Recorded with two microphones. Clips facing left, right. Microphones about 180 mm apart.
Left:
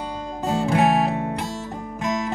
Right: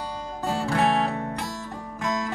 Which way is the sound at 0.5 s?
20° left (ahead or behind).